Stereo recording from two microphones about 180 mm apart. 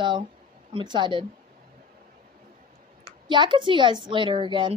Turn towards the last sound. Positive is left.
turn(degrees=-25)  # may be behind; listen again after turning